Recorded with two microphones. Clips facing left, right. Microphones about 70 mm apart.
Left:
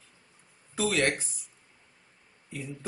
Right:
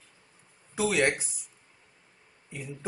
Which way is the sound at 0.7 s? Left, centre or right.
Centre.